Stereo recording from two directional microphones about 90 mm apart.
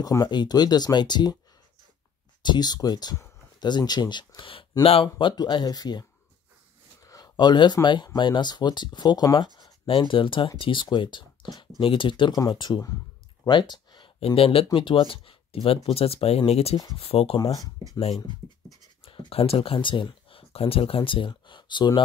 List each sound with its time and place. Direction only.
0.0 s speech: 40° left (ahead or behind)
0.3 s speech: 55° left (ahead or behind)
2.4 s speech: 55° left (ahead or behind); by 4.6 s 75° left (ahead or behind)
4.8 s speech: 90° left
5.3 s speech: 50° left (ahead or behind)
7.0 s a sound: 40° left (ahead or behind)
7.3 s speech: 55° left (ahead or behind)
9.8 s speech: 70° left (ahead or behind)
11.8 s speech: 70° left (ahead or behind)
12.4 s speech: 55° left (ahead or behind); by 17.4 s 90° left
19.0 s speech: 85° left; by 22.0 s 60° left (ahead or behind)